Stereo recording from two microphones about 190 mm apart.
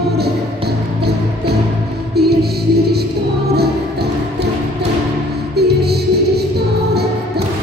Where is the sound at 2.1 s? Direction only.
55° right (ahead or behind).